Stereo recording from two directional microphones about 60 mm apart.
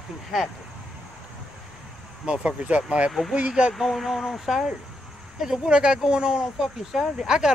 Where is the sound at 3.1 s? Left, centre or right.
Centre.